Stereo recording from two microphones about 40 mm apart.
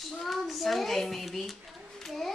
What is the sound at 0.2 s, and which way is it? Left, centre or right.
A child's voice, centre.